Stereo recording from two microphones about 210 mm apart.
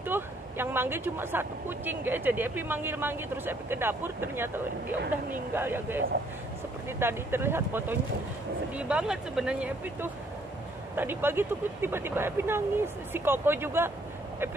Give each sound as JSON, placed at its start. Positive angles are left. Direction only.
{"t": 0.0, "sound": "speech", "side_deg": -10}
{"t": 5.5, "sound": "speech", "side_deg": -10}